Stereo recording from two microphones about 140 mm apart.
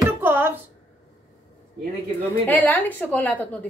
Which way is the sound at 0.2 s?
15° right (ahead or behind).